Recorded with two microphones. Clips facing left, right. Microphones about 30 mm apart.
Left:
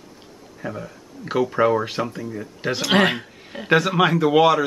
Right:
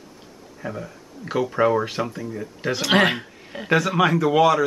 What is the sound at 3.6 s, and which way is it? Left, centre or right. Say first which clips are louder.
Speech: left 1 dB; centre.